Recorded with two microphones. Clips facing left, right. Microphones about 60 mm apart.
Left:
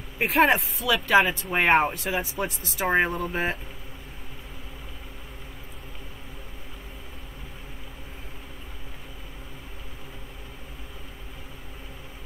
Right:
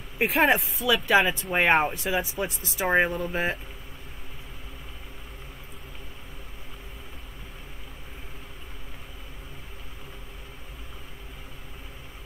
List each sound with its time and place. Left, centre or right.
0.2 s speech: centre